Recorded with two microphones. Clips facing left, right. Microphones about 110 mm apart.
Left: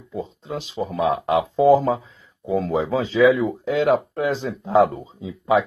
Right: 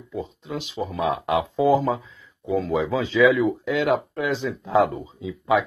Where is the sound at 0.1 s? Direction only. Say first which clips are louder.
Left 1 dB; 35° left (ahead or behind).